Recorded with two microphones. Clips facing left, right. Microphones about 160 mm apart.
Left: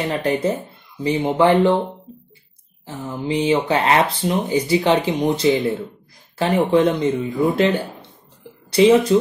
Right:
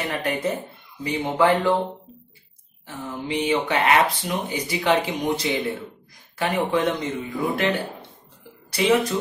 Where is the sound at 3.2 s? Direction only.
30° left (ahead or behind).